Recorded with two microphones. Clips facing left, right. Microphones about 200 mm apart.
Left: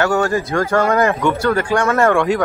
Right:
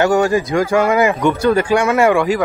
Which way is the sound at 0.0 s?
15° right (ahead or behind).